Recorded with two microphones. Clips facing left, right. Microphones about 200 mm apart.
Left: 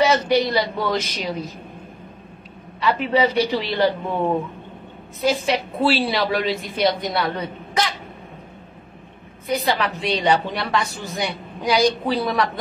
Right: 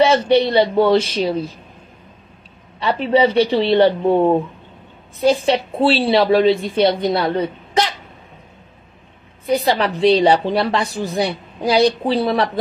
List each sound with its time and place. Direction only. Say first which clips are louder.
0.3 s a woman's voice: right 5 dB; 30° right (ahead or behind)
2.8 s a woman's voice: right 4 dB; 35° right (ahead or behind)
9.5 s a woman's voice: right 5 dB; 30° right (ahead or behind)